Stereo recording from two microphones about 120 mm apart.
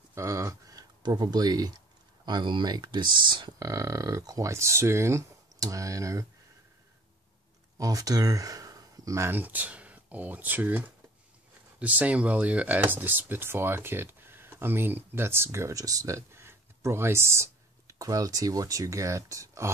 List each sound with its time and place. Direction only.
0.1 s a sound: 25° right (ahead or behind)
2.2 s speech: 40° right (ahead or behind)
3.5 s speech: 25° right (ahead or behind)
7.7 s speech: 30° right (ahead or behind)